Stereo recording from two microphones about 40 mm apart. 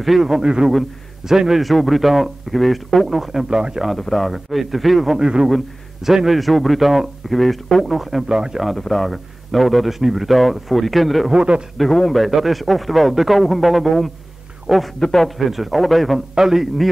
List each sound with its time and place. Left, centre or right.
0.0 s a man's voice: centre
0.4 s a man's voice: centre
1.6 s a man's voice: centre
3.4 s speech: centre
4.0 s a man's voice: centre
5.2 s a man's voice: centre
8.3 s speech: centre
8.6 s a man's voice: centre
11.3 s speech: right
11.8 s a man's voice: centre
12.2 s a man's voice: centre
15.0 s a man's voice: centre
15.2 s a man's voice: centre